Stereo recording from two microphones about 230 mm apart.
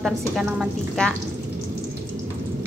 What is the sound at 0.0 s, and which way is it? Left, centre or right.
A woman's voice, centre.